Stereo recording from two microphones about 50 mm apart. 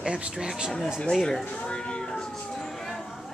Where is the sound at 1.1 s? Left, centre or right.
Centre.